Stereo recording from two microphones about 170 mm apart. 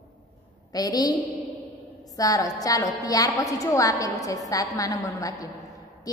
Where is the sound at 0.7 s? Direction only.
20° left (ahead or behind).